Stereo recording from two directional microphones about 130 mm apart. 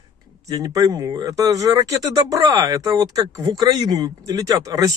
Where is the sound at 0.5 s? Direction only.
25° right (ahead or behind).